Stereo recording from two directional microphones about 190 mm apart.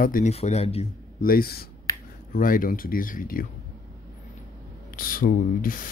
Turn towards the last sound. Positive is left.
turn(degrees=45)  # may be behind; listen again after turning